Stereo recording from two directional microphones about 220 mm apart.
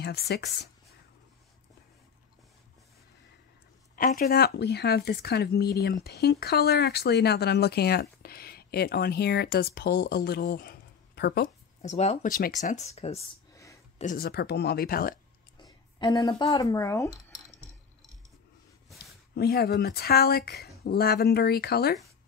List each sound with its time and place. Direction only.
0.0 s speech: 45° left (ahead or behind)
3.9 s speech: 40° left (ahead or behind)
11.8 s speech: 30° left (ahead or behind)
13.9 s speech: 40° left (ahead or behind)
15.6 s speech: 15° left (ahead or behind)
19.3 s speech: 45° left (ahead or behind)